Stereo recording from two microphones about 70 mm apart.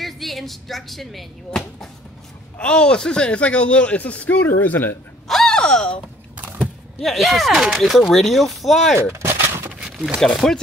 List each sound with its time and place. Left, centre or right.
0.0 s speech: centre
2.5 s speech: centre
5.3 s gasp: centre
6.3 s a sound: right
7.0 s speech: centre
9.1 s gunshot: right
9.7 s a sound: centre
10.2 s speech: centre